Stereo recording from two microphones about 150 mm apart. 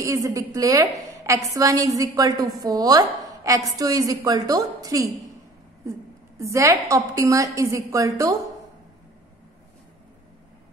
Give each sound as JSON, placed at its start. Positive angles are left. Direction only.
{"t": 0.0, "sound": "a woman's voice", "side_deg": -20}